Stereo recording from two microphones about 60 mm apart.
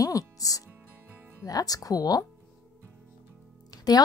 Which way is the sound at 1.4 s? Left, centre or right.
Left.